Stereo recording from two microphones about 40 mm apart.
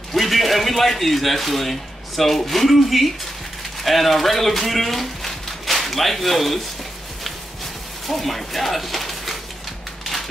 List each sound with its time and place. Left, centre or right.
0.1 s speech: centre
8.1 s speech: centre